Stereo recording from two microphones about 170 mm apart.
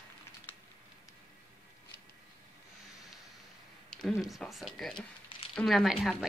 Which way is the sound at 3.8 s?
Centre (ahead or behind).